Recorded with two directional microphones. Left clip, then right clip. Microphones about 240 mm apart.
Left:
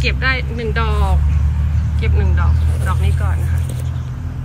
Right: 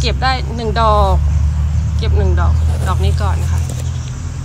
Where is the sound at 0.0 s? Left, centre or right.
Centre.